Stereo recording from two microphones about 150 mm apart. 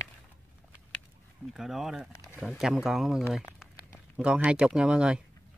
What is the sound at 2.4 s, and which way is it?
Speech, centre (ahead or behind).